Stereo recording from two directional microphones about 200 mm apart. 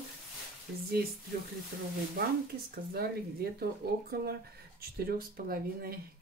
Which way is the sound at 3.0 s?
50° right (ahead or behind).